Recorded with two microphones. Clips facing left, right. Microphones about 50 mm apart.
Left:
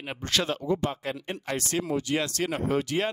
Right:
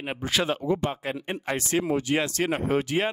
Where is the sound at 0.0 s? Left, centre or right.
Centre.